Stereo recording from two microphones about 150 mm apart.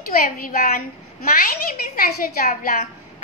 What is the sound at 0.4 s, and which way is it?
A woman's voice, 70° left (ahead or behind).